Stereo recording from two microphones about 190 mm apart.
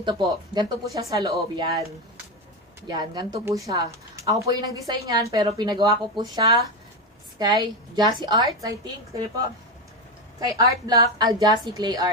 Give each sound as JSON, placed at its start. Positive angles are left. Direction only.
{"t": 0.0, "sound": "speech", "side_deg": -25}
{"t": 2.9, "sound": "speech", "side_deg": -25}
{"t": 10.4, "sound": "speech", "side_deg": -20}